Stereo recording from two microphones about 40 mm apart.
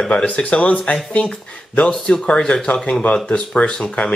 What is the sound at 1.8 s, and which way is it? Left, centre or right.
Speech, centre.